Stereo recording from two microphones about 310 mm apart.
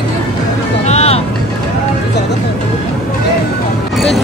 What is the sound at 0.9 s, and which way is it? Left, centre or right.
Music, centre.